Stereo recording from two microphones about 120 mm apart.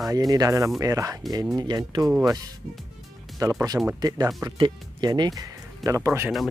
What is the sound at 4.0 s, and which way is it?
Speech, 35° right (ahead or behind).